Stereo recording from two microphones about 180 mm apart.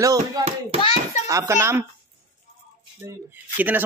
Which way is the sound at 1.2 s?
15° right (ahead or behind).